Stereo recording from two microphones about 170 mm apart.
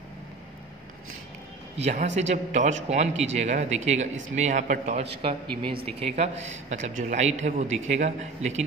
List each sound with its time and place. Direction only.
1.8 s a man's voice: 40° right (ahead or behind)